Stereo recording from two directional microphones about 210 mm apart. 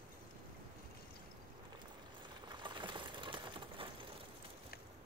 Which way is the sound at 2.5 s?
20° right (ahead or behind).